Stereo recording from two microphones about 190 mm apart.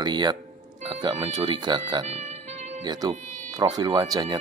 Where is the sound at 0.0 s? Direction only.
20° right (ahead or behind).